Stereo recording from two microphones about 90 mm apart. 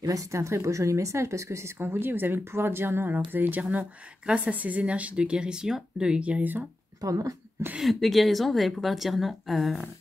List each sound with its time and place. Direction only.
0.0 s a woman's voice: 40° right (ahead or behind); by 6.6 s 15° right (ahead or behind)
7.0 s a woman's voice: 40° right (ahead or behind)
7.8 s a woman's voice: centre (ahead or behind)